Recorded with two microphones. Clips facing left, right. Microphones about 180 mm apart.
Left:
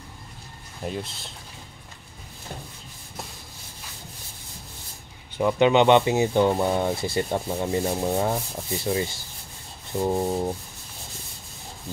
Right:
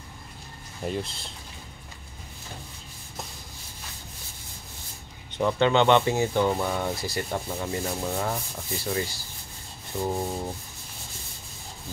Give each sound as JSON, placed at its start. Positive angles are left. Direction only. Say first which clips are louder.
{"t": 0.8, "sound": "speech", "louder": "right 1 dB", "side_deg": 0}
{"t": 5.4, "sound": "speech", "louder": "left 3 dB", "side_deg": 15}